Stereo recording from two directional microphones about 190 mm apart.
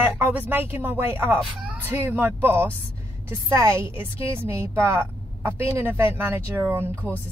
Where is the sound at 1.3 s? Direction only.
Centre (ahead or behind).